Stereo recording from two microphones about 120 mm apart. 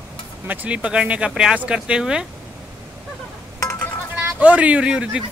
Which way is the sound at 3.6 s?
20° left (ahead or behind).